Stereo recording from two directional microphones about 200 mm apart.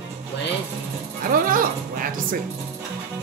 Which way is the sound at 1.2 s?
45° right (ahead or behind).